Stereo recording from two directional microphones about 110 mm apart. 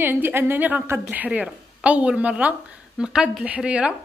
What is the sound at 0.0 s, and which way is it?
Speech, 20° right (ahead or behind).